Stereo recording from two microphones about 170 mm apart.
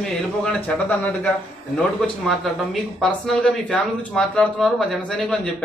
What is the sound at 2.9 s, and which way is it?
Speech, 5° left (ahead or behind).